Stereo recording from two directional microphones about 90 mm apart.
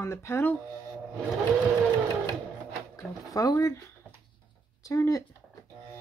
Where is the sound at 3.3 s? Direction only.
40° left (ahead or behind).